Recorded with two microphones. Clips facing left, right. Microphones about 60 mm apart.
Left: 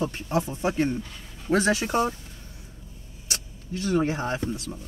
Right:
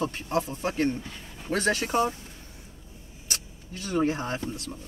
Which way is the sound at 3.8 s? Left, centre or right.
Centre.